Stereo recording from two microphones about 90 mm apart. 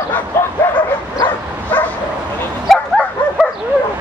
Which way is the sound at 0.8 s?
55° left (ahead or behind).